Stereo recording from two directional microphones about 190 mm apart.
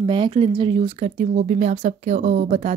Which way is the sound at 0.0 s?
25° right (ahead or behind).